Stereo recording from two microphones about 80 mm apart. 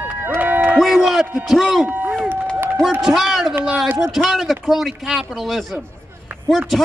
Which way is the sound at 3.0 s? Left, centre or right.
Centre.